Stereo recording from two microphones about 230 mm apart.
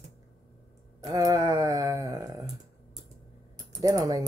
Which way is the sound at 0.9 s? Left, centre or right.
Centre.